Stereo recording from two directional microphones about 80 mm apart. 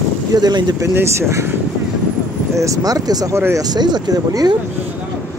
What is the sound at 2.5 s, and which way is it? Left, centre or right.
Speech, right.